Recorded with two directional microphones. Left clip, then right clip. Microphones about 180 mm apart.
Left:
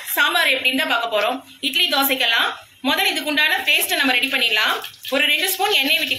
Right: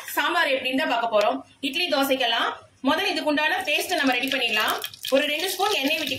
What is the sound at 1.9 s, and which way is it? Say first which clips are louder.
A woman's voice: left 4 dB; 25° right (ahead or behind).